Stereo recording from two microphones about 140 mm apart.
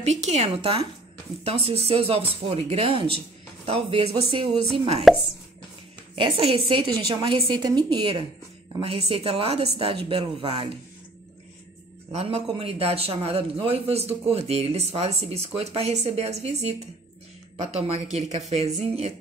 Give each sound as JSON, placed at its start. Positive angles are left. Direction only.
{"t": 0.0, "sound": "a woman's voice", "side_deg": -55}
{"t": 5.0, "sound": "speech", "side_deg": 0}
{"t": 6.1, "sound": "a woman's voice", "side_deg": -40}
{"t": 12.1, "sound": "speech", "side_deg": -45}